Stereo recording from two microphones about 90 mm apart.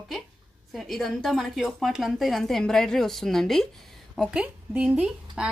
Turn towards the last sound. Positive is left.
turn(degrees=-10)  # may be behind; listen again after turning